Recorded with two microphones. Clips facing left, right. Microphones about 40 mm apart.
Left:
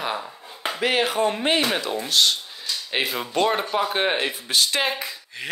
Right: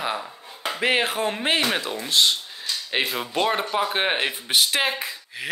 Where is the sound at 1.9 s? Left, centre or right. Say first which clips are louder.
Even; centre.